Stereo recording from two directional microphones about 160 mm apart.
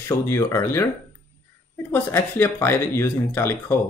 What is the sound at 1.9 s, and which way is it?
Speech, 15° left (ahead or behind).